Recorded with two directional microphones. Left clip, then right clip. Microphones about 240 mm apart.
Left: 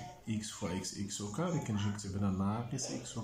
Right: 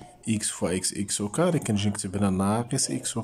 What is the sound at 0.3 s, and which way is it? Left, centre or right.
Speech, right.